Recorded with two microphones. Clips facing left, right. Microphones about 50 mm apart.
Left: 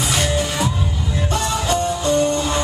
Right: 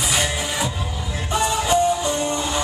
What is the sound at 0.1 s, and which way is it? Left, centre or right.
Music, centre.